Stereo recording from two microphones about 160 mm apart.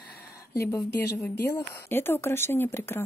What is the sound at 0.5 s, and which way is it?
Speech, 20° left (ahead or behind).